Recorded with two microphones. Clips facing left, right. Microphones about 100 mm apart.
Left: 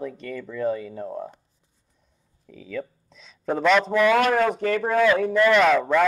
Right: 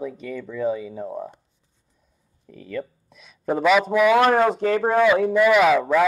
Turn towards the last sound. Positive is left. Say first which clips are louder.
# right 2 dB
turn(degrees=-5)  # may be behind; listen again after turning